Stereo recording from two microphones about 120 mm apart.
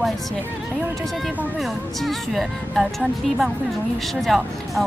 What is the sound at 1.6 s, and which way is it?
Speech, centre (ahead or behind).